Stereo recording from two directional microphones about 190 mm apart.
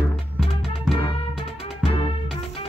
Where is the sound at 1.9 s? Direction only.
30° left (ahead or behind).